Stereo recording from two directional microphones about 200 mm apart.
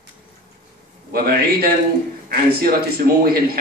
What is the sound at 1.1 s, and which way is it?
A man's voice, 50° right (ahead or behind).